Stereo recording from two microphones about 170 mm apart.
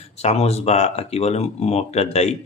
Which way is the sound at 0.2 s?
40° left (ahead or behind).